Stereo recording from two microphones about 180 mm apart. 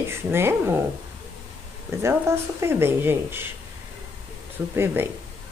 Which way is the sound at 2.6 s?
15° right (ahead or behind).